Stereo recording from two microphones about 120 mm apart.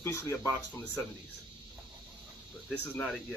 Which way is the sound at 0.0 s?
20° left (ahead or behind).